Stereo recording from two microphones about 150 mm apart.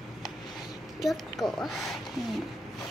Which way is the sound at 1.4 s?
Centre (ahead or behind).